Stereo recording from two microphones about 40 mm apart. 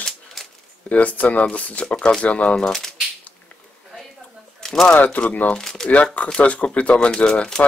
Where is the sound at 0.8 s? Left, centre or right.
Left.